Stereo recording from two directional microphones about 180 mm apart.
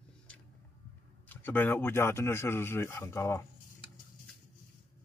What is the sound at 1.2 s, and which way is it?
Speech, 10° left (ahead or behind).